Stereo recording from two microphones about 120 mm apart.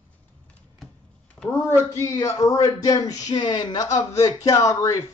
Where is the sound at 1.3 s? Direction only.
15° left (ahead or behind).